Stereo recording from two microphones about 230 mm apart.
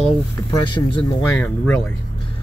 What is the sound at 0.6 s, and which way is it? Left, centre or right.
Speech, left.